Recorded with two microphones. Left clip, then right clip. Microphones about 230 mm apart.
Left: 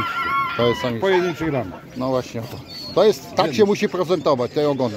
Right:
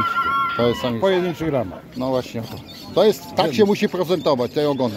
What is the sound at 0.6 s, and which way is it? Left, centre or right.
Speech, centre.